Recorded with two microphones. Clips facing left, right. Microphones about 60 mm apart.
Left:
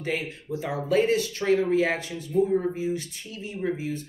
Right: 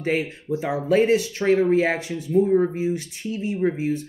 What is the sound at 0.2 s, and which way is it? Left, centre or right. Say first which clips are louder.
Speech: right 6 dB; right.